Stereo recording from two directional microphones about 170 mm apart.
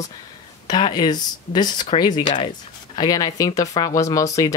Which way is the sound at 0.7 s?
25° left (ahead or behind).